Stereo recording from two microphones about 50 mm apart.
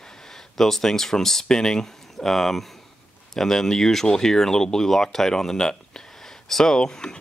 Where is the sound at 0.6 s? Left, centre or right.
Centre.